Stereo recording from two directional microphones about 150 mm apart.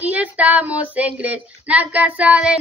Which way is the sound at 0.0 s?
10° right (ahead or behind).